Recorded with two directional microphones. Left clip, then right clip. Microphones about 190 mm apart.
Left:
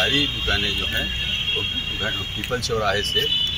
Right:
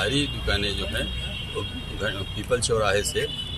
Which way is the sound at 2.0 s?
30° right (ahead or behind).